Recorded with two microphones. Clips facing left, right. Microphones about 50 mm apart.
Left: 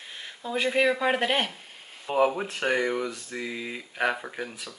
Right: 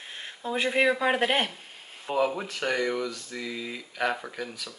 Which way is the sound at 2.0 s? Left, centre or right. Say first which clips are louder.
Left 3 dB; centre.